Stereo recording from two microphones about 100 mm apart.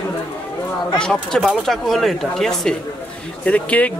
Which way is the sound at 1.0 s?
10° left (ahead or behind).